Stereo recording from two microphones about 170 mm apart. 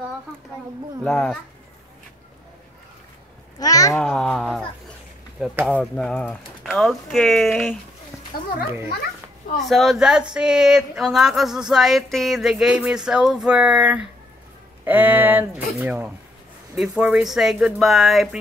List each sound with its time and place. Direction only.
1.0 s speech: 5° left (ahead or behind)
3.5 s a child's voice: 20° left (ahead or behind)
4.0 s speech: 5° left (ahead or behind)
5.7 s speech: 5° left (ahead or behind)
9.6 s speech: centre (ahead or behind)